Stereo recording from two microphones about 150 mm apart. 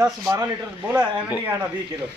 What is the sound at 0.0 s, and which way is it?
Speech, 25° right (ahead or behind).